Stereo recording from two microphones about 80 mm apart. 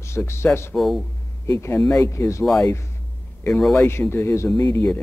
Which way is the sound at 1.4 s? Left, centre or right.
Left.